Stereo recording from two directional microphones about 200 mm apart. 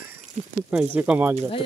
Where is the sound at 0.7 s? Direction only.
10° right (ahead or behind).